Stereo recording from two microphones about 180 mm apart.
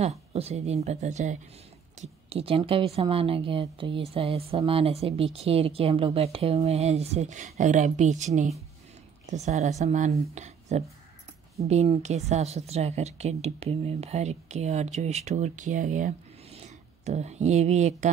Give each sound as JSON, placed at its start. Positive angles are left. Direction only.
{"t": 0.0, "sound": "a woman's voice", "side_deg": -35}